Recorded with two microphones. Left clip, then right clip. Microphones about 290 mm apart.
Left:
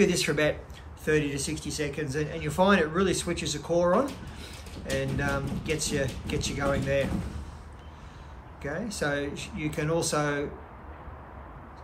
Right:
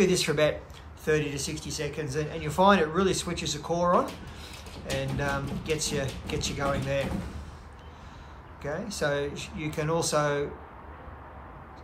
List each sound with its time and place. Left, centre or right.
0.0 s a man's voice: centre
5.2 s a man's voice: centre
8.6 s a man's voice: centre